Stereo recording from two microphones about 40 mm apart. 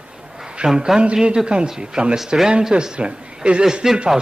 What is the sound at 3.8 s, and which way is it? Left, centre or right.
Speech, centre.